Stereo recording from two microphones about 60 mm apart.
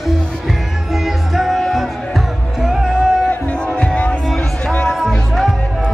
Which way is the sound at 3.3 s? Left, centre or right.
Left.